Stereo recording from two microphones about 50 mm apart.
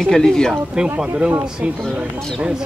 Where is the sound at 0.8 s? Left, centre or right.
Centre.